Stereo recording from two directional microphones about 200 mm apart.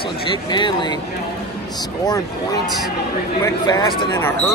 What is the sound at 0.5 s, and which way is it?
Speech, 20° left (ahead or behind).